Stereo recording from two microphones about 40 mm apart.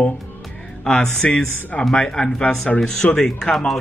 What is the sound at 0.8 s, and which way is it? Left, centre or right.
A man's voice, centre.